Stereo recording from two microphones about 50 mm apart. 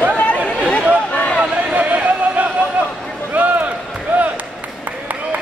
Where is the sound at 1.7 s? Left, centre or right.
Right.